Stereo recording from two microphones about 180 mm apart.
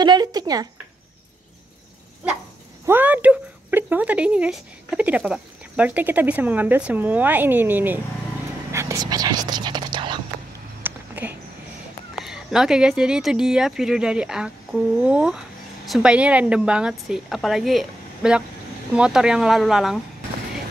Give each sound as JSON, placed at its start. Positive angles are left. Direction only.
{"t": 0.0, "sound": "speech", "side_deg": -25}
{"t": 2.9, "sound": "speech", "side_deg": -10}
{"t": 10.8, "sound": "a sound", "side_deg": -10}
{"t": 12.2, "sound": "speech", "side_deg": -5}